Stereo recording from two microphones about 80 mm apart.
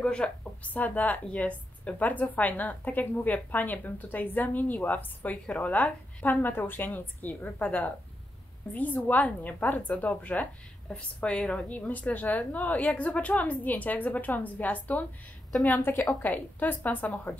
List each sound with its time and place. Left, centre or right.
0.0 s a woman's voice: centre
11.9 s a woman's voice: left